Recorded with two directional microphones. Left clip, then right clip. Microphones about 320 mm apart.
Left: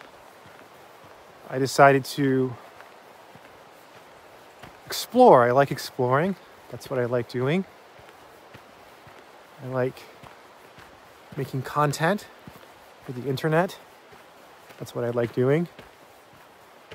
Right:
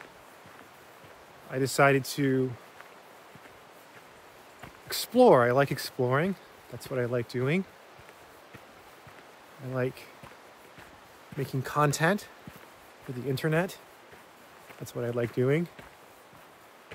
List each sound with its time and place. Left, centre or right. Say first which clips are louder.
1.5 s speech: left 6 dB; centre
4.8 s speech: left 5 dB; centre
9.7 s speech: left 5 dB; centre
11.3 s speech: left 3 dB; centre
14.9 s speech: left 5 dB; centre